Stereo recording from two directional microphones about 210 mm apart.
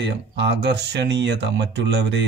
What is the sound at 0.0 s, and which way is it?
Speech, 55° right (ahead or behind).